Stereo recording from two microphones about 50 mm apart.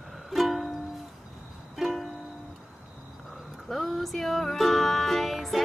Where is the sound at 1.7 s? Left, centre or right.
Centre.